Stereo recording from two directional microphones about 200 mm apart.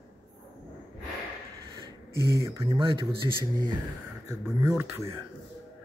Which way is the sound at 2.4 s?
20° right (ahead or behind).